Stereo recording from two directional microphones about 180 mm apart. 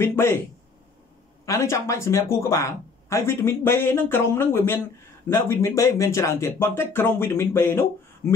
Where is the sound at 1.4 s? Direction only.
15° left (ahead or behind).